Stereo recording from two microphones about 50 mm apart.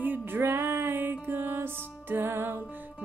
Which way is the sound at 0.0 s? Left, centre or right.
Right.